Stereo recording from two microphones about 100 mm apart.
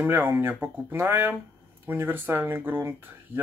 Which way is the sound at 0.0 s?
20° right (ahead or behind).